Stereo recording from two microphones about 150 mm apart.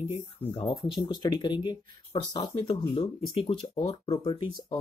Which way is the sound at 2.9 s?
40° left (ahead or behind).